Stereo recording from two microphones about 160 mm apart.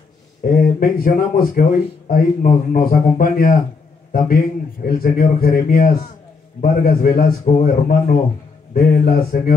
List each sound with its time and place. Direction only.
0.5 s a man's voice: 60° left (ahead or behind)